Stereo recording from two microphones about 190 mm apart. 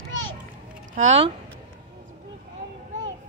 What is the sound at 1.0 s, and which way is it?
Speech, 35° right (ahead or behind).